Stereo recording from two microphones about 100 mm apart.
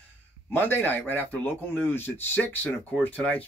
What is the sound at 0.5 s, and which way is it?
Speech, 20° left (ahead or behind).